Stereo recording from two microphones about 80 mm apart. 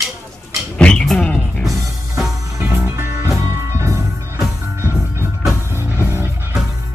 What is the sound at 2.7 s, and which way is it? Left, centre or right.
Music, right.